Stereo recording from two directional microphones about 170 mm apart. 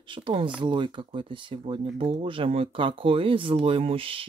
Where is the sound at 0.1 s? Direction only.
30° right (ahead or behind).